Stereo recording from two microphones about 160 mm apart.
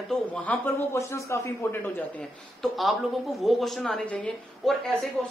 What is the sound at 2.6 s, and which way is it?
Speech, centre (ahead or behind).